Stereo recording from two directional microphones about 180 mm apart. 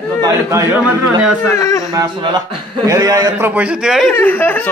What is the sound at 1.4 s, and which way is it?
Speech, 20° left (ahead or behind).